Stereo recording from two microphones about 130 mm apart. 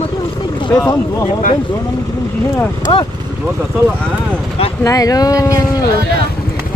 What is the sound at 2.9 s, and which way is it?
Speech, 30° left (ahead or behind).